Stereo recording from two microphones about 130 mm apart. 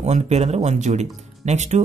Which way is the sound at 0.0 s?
60° right (ahead or behind).